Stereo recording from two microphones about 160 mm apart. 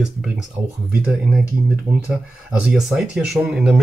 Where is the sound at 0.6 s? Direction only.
15° right (ahead or behind).